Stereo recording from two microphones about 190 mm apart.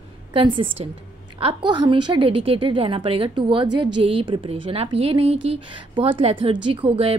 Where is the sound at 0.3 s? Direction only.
25° right (ahead or behind).